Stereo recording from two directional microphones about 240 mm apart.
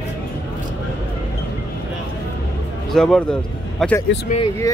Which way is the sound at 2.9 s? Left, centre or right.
Centre.